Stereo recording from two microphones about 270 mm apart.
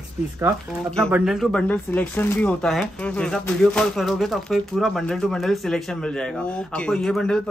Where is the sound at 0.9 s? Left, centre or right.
Centre.